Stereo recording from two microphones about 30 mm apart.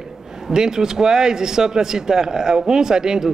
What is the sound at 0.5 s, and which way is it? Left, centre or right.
Speech, right.